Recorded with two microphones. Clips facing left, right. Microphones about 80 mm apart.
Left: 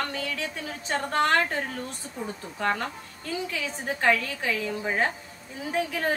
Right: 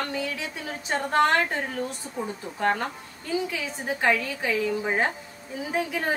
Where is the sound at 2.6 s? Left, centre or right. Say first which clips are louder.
Right 2 dB; right.